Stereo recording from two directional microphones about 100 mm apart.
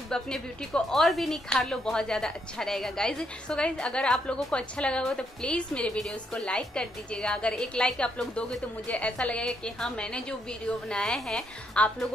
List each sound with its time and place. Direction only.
0.1 s a woman's voice: 5° left (ahead or behind)